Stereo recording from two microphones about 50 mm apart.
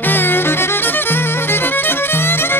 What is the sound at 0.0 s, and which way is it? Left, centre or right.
Music, left.